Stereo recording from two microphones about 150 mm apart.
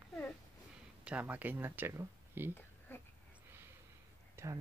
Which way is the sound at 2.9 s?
15° left (ahead or behind).